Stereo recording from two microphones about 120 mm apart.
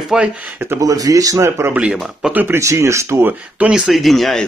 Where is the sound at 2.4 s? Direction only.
20° right (ahead or behind).